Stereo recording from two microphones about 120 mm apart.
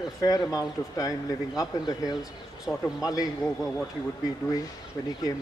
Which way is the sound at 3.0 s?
30° left (ahead or behind).